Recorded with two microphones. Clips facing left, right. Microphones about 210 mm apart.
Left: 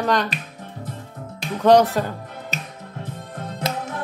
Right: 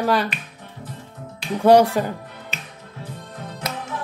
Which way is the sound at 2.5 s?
40° left (ahead or behind).